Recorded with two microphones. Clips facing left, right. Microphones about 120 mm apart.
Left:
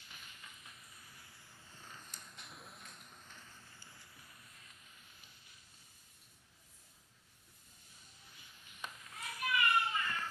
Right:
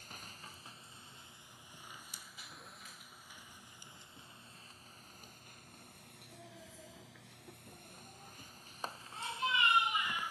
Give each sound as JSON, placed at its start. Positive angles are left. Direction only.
{"t": 0.1, "sound": "music", "side_deg": -40}
{"t": 1.9, "sound": "a sound", "side_deg": -10}
{"t": 8.8, "sound": "children playing", "side_deg": -30}